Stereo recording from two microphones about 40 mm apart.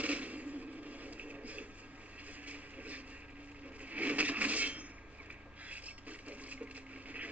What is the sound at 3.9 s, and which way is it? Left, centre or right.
Rub, right.